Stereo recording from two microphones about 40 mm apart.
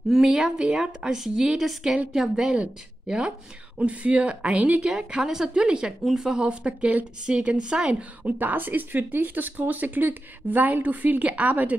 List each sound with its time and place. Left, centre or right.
0.1 s a woman's voice: centre; by 4.8 s right
4.8 s a woman's voice: centre
5.5 s a woman's voice: right
8.4 s speech: right